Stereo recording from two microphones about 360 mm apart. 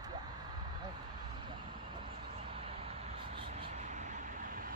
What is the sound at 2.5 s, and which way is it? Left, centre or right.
Vehicle, centre.